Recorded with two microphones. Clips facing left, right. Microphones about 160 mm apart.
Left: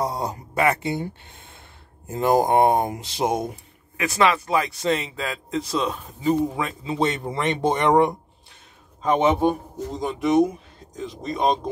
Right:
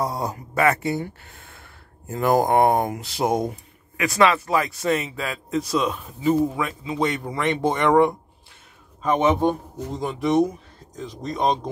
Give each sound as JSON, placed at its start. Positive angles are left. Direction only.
{"t": 0.0, "sound": "a man's voice", "side_deg": 25}
{"t": 9.9, "sound": "speech", "side_deg": 0}